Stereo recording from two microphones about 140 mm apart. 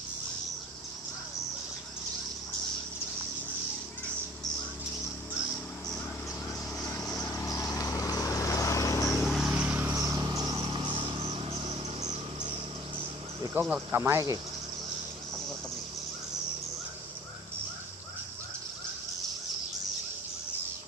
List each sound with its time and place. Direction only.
6.9 s vehicle: 20° left (ahead or behind)
9.2 s vehicle: centre (ahead or behind)
9.6 s vehicle: 10° right (ahead or behind)
9.9 s music: 25° right (ahead or behind)
11.2 s a sound: 45° right (ahead or behind)
13.5 s speech: 10° right (ahead or behind)